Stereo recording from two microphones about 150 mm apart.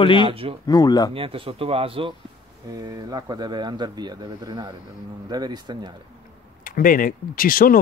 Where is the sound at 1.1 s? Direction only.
35° right (ahead or behind).